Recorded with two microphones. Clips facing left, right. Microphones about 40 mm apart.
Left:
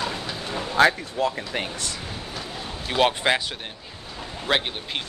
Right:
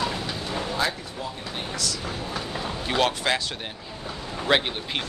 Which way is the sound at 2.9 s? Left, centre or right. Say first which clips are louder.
Left 3 dB; centre.